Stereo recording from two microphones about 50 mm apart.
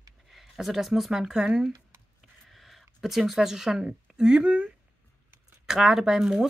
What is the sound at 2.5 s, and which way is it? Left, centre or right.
Speech, centre.